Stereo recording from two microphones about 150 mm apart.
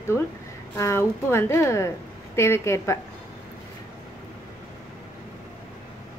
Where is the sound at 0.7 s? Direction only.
20° left (ahead or behind).